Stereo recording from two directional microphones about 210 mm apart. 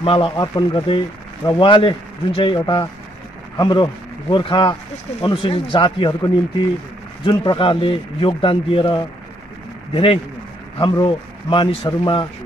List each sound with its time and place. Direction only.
0.0 s speech: 25° left (ahead or behind)